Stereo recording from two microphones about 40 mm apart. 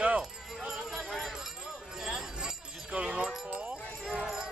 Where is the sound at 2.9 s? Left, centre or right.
Right.